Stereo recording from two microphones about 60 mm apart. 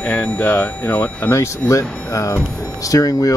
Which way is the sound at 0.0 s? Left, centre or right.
Left.